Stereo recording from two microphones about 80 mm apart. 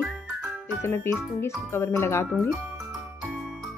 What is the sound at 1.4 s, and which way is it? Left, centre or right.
A woman's voice, left.